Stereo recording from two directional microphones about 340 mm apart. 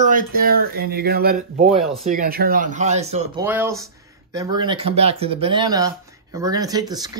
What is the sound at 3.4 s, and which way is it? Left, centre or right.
Speech, centre.